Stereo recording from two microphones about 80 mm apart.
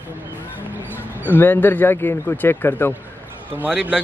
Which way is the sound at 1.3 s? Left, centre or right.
Left.